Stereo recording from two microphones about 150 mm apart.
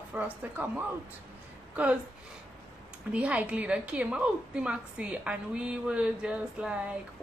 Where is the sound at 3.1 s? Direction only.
10° right (ahead or behind).